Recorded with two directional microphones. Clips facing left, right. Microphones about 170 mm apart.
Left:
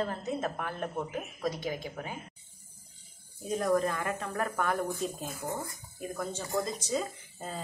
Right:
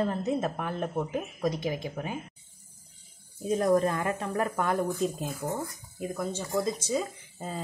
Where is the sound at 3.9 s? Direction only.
25° right (ahead or behind).